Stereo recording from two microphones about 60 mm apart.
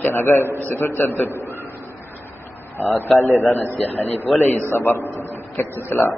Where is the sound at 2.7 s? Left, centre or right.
Left.